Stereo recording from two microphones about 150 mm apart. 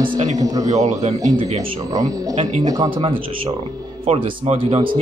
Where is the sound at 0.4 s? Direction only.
25° right (ahead or behind).